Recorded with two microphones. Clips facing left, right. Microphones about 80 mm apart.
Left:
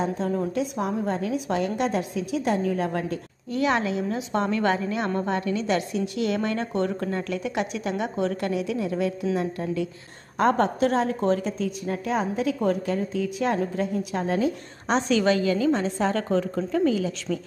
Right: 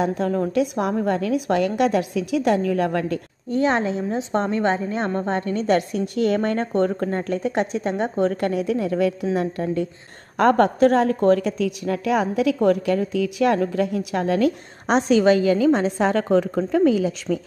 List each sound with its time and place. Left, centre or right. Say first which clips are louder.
0.0 s a woman's voice: right 4 dB; right
3.4 s a woman's voice: right 3 dB; right
8.3 s a woman's voice: right 4 dB; right
15.0 s a woman's voice: right 5 dB; right